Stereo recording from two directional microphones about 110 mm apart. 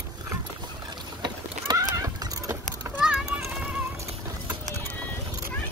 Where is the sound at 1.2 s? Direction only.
35° right (ahead or behind).